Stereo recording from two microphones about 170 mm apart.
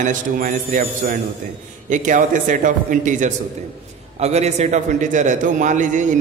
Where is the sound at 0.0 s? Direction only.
50° right (ahead or behind).